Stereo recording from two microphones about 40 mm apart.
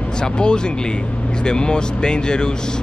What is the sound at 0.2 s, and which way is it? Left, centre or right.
Speech, left.